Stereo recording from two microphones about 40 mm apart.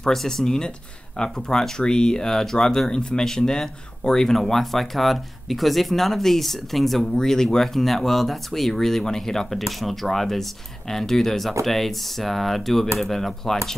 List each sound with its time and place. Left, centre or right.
0.0 s speech: centre